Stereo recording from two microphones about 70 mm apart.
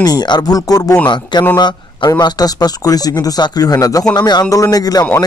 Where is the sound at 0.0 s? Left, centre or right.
Left.